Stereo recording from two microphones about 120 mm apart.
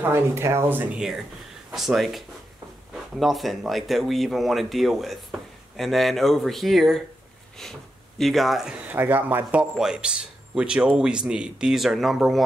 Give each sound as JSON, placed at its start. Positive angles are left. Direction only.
{"t": 0.0, "sound": "speech", "side_deg": -20}
{"t": 1.7, "sound": "speech", "side_deg": 0}
{"t": 8.8, "sound": "a man's voice", "side_deg": -15}